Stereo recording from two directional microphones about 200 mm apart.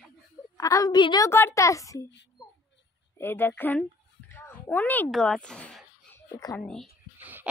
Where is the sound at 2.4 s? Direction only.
15° left (ahead or behind).